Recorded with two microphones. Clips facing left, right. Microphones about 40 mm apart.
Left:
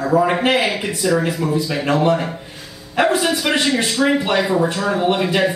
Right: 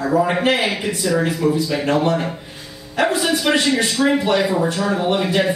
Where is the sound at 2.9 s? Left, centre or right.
Left.